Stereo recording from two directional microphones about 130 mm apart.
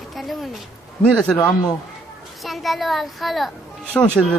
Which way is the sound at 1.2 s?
5° left (ahead or behind).